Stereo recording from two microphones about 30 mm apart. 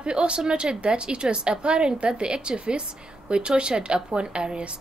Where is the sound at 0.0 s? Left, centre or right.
Right.